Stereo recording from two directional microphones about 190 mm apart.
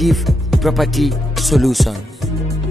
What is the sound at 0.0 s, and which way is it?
Music, centre (ahead or behind).